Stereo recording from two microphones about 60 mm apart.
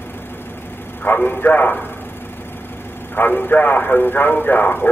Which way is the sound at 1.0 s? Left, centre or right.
Left.